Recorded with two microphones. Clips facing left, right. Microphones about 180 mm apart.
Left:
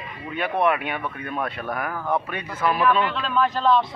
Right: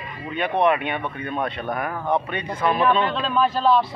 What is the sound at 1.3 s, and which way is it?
A man's voice, 20° right (ahead or behind).